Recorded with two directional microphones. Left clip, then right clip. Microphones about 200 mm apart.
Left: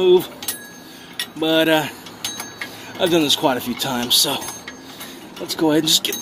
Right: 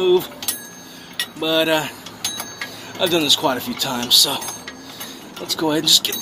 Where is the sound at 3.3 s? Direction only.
35° left (ahead or behind).